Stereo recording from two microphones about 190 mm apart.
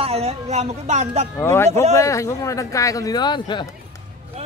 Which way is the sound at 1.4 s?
15° left (ahead or behind).